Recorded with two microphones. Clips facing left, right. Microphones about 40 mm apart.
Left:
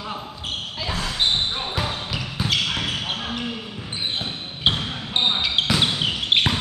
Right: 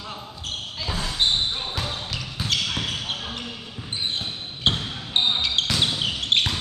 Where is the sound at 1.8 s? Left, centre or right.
Centre.